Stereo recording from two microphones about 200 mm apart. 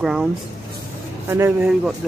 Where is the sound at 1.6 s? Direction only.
Centre (ahead or behind).